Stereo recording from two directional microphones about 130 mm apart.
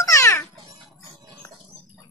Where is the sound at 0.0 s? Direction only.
25° left (ahead or behind).